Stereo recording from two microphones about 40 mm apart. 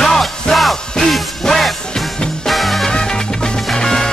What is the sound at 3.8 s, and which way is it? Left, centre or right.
Music, centre.